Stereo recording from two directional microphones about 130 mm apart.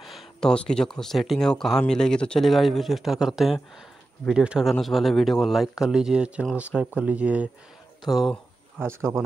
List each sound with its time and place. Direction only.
0.0 s speech: centre (ahead or behind)
8.0 s a sound: centre (ahead or behind)
8.8 s speech: 20° right (ahead or behind)